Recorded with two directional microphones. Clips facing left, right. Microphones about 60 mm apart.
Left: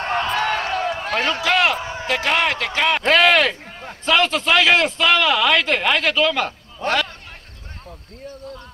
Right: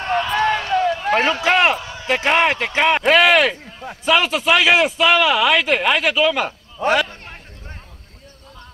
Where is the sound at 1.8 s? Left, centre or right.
Left.